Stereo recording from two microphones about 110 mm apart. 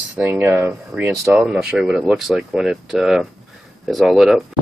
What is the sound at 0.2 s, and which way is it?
Speech, 20° right (ahead or behind).